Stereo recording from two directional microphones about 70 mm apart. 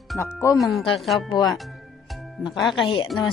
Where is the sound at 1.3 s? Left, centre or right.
Left.